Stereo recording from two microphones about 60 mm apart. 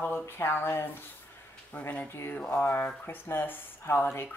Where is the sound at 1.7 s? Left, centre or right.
Left.